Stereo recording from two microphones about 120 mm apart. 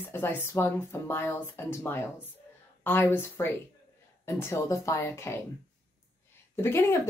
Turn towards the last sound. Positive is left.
turn(degrees=20)  # may be behind; listen again after turning